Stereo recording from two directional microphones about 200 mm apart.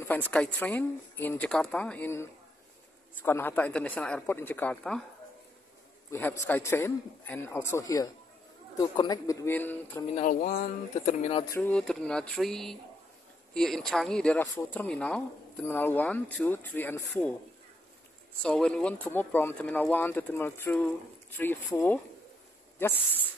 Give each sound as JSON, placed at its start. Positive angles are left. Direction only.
{"t": 0.1, "sound": "speech", "side_deg": 5}
{"t": 6.0, "sound": "a man's voice", "side_deg": 10}
{"t": 10.1, "sound": "speech", "side_deg": 40}
{"t": 11.5, "sound": "speech", "side_deg": 5}
{"t": 18.4, "sound": "speech", "side_deg": 5}